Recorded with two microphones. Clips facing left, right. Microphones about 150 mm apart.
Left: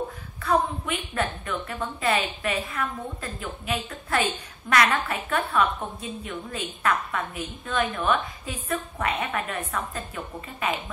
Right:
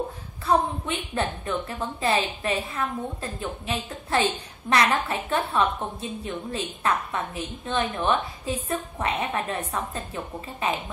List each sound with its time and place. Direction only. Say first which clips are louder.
0.4 s a woman's voice: right 1 dB; 30° right (ahead or behind)